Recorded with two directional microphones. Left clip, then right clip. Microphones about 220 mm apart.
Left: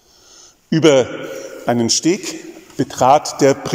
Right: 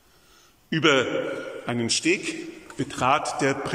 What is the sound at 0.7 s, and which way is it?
A man's voice, 25° left (ahead or behind).